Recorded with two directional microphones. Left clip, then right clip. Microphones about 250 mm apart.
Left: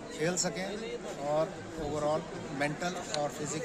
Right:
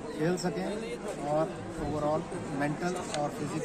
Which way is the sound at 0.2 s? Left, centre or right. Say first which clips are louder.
Right 1 dB; centre.